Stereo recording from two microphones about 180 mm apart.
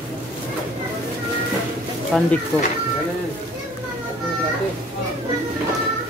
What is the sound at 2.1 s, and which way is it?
Speech, centre (ahead or behind).